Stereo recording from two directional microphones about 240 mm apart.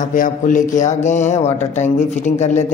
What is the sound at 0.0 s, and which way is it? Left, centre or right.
Speech, left.